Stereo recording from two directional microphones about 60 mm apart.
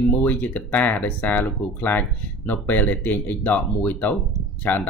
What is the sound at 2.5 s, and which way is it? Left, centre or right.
Speech, left.